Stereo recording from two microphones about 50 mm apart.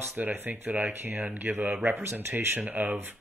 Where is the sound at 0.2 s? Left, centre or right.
Right.